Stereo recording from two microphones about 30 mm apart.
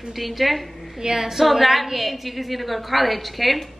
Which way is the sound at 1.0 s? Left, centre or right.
Right.